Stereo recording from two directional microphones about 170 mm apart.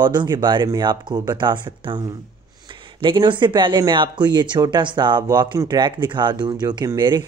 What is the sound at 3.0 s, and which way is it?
Speech, 30° right (ahead or behind).